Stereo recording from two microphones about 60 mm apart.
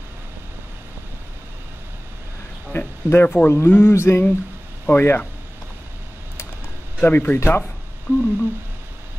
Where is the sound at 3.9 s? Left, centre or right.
Left.